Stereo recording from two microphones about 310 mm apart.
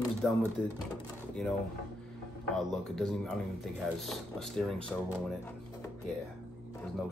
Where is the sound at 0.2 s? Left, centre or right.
Centre.